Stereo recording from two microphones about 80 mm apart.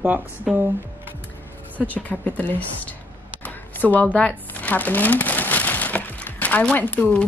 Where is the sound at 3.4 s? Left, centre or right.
Left.